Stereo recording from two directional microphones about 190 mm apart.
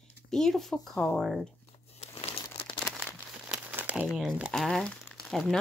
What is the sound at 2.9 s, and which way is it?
Crumpling, centre (ahead or behind).